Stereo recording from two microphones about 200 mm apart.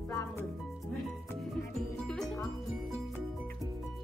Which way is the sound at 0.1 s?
15° left (ahead or behind).